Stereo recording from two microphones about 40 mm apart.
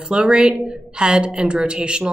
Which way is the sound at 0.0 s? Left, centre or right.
Right.